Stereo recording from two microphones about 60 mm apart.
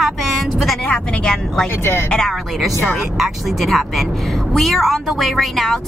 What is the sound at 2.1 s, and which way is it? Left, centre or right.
Speech, centre.